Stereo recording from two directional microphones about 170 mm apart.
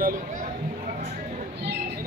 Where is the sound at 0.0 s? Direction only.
50° right (ahead or behind).